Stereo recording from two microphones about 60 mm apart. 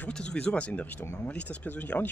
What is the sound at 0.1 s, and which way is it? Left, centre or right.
Speech, centre.